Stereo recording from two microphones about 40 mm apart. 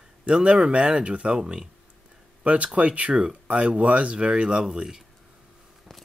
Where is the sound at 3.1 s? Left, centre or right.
Right.